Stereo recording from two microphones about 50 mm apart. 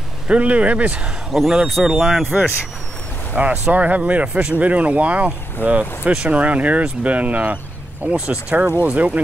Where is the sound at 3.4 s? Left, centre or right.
Right.